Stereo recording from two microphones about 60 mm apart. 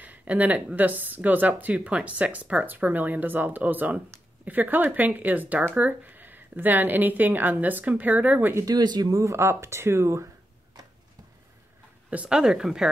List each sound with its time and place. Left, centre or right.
0.0 s speech: right
8.6 s speech: right
12.3 s speech: centre